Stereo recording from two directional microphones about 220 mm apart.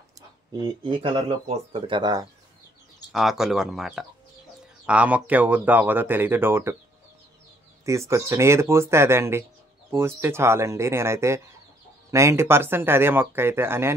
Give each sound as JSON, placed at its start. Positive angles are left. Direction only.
{"t": 0.6, "sound": "speech", "side_deg": -20}
{"t": 3.1, "sound": "speech", "side_deg": 0}
{"t": 8.1, "sound": "speech", "side_deg": -10}